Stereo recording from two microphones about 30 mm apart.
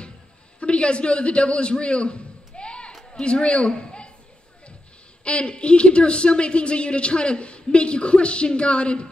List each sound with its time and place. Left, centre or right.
0.6 s a man's voice: left
5.2 s speech: left